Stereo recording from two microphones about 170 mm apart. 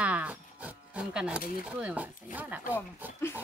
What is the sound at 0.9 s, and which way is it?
Speech, 5° right (ahead or behind).